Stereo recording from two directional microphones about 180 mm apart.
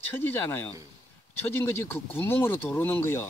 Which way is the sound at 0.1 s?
10° left (ahead or behind).